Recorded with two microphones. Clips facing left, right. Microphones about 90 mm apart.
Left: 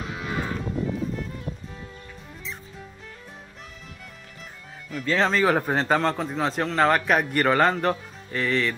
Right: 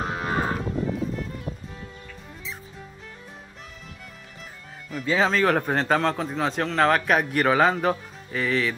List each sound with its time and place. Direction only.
0.0 s moo: 45° right (ahead or behind)
0.6 s music: centre (ahead or behind)
4.8 s speech: 5° right (ahead or behind)